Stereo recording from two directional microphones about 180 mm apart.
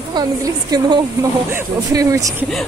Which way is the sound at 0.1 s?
20° right (ahead or behind).